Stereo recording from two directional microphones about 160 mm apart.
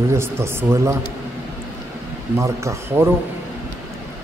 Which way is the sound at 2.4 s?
15° right (ahead or behind).